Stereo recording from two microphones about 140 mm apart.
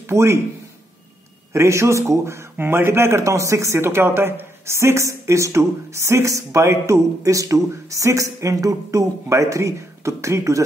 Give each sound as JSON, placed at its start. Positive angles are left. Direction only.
{"t": 0.0, "sound": "speech", "side_deg": -20}
{"t": 1.5, "sound": "a man's voice", "side_deg": -20}